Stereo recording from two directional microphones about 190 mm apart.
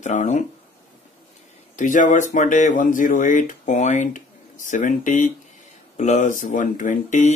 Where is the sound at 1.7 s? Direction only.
40° left (ahead or behind).